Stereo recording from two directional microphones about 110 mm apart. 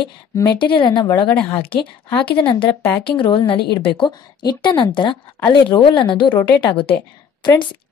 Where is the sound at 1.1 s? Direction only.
10° left (ahead or behind).